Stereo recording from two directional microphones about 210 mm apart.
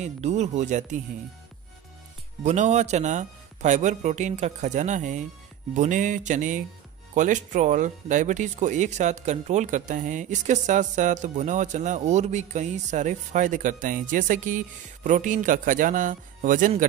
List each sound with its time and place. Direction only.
0.0 s speech: 35° right (ahead or behind)
2.4 s speech: 35° right (ahead or behind)